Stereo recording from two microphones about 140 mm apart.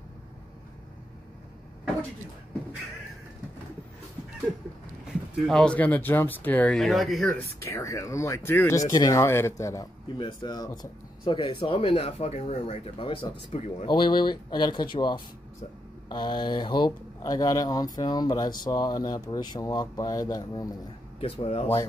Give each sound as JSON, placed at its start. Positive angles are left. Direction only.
{"t": 5.0, "sound": "speech", "side_deg": 5}
{"t": 7.3, "sound": "speech", "side_deg": 20}
{"t": 10.1, "sound": "speech", "side_deg": 35}
{"t": 13.8, "sound": "speech", "side_deg": 35}
{"t": 21.2, "sound": "speech", "side_deg": 45}